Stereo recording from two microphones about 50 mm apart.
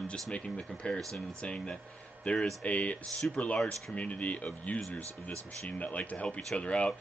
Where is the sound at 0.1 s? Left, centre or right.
Centre.